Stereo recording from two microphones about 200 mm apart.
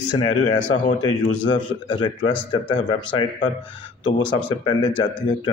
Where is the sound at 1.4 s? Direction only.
20° left (ahead or behind).